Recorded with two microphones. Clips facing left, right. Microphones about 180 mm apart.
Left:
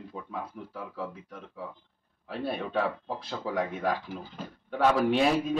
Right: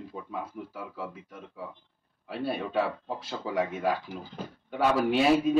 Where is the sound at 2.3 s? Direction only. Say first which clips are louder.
Right 1 dB; centre (ahead or behind).